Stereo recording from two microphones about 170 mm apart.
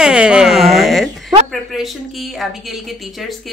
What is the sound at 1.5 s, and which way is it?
Speech, centre (ahead or behind).